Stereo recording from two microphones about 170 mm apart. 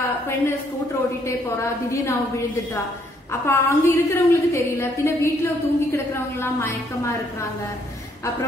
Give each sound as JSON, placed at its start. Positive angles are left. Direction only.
{"t": 1.2, "sound": "a woman's voice", "side_deg": 15}
{"t": 3.4, "sound": "a woman's voice", "side_deg": 15}